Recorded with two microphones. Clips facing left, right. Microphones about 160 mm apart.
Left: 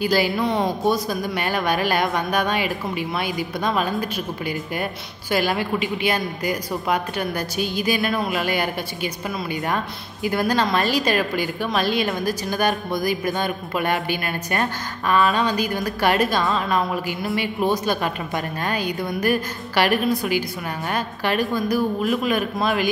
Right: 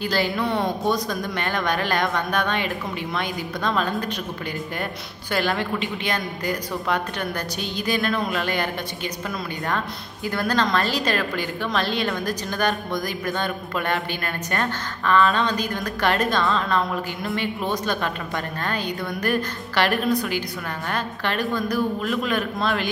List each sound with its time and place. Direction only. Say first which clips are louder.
0.0 s a woman's voice: left 3 dB; 15° left (ahead or behind)
5.3 s a woman's voice: left 2 dB; 10° left (ahead or behind)
10.2 s a woman's voice: left 2 dB; 10° left (ahead or behind)